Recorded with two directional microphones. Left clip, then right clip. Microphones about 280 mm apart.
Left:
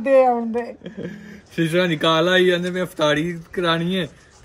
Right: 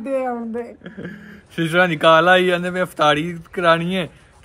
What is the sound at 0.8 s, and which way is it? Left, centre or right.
A man's voice, centre.